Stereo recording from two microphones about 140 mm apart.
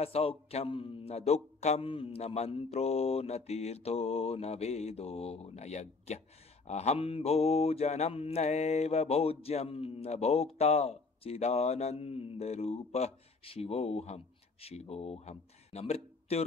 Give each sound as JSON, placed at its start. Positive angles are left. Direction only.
{"t": 0.0, "sound": "mantra", "side_deg": 45}